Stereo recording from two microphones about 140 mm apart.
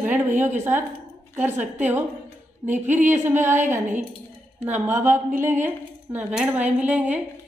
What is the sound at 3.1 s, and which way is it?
A woman's voice, 15° right (ahead or behind).